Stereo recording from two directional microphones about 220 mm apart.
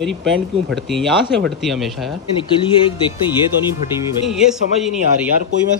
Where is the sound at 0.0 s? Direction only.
Centre (ahead or behind).